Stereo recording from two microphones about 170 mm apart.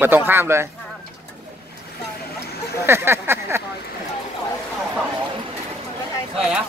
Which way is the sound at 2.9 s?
15° right (ahead or behind).